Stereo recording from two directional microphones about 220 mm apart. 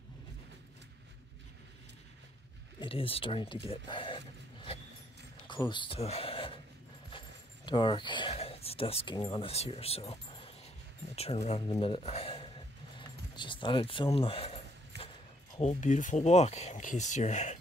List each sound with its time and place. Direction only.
2.8 s speech: 25° left (ahead or behind)
3.6 s a sound: 25° left (ahead or behind)
5.7 s speech: 25° left (ahead or behind)
11.1 s speech: 30° left (ahead or behind)